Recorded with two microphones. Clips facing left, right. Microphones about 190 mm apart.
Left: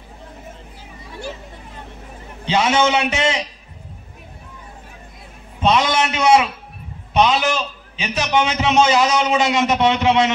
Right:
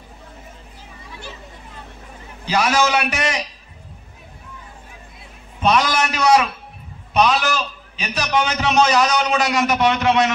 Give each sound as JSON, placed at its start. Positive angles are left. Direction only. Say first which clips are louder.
{"t": 2.4, "sound": "a man's voice", "louder": "left 2 dB", "side_deg": 25}
{"t": 5.6, "sound": "a man's voice", "louder": "left 1 dB", "side_deg": 25}